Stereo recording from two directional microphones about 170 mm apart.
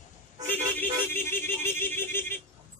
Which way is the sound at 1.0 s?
15° left (ahead or behind).